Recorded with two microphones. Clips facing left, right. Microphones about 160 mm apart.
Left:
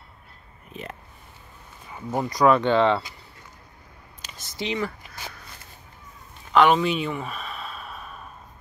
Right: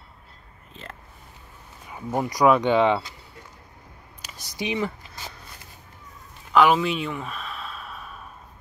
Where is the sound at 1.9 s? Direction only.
10° right (ahead or behind).